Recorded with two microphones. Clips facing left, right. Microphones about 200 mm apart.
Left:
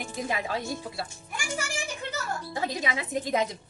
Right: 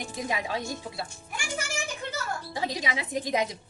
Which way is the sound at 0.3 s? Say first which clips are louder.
Even; 15° right (ahead or behind).